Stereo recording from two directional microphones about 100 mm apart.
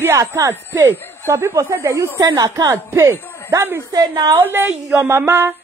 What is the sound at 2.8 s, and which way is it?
Speech, 30° right (ahead or behind).